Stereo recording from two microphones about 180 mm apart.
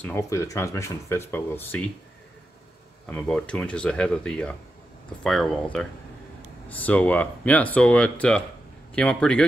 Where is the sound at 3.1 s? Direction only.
5° left (ahead or behind).